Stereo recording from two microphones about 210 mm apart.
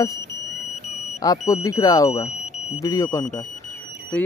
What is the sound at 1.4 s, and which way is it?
Speech, 15° left (ahead or behind).